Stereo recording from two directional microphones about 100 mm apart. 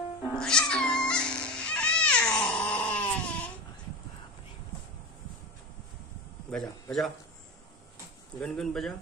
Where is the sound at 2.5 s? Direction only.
15° left (ahead or behind).